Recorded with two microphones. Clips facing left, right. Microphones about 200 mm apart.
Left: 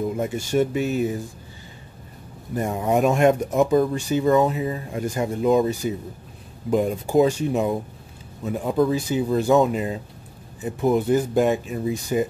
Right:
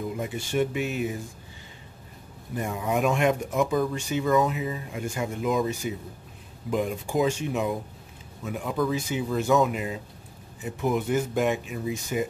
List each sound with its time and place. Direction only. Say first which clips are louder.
0.2 s speech: left 4 dB; 45° left (ahead or behind)
2.5 s speech: left 6 dB; 40° left (ahead or behind)